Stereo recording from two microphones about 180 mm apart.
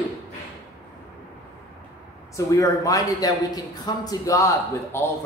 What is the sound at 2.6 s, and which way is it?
A man's voice, 20° left (ahead or behind).